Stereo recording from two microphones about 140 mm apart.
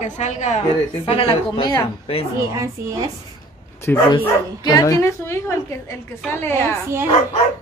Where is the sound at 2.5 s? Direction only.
25° right (ahead or behind).